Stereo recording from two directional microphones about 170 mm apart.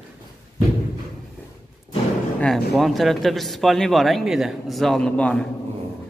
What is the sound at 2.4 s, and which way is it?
Speech, centre (ahead or behind).